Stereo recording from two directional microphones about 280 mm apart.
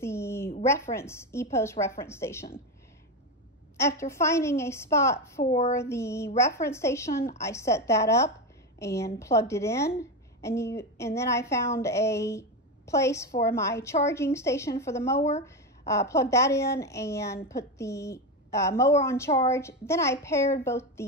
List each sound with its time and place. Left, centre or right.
0.0 s a sound: centre
0.7 s a woman's voice: centre
3.7 s a woman's voice: centre
5.4 s speech: left
5.7 s a woman's voice: centre